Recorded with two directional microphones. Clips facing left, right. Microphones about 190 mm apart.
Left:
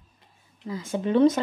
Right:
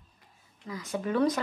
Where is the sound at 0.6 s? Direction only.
25° left (ahead or behind).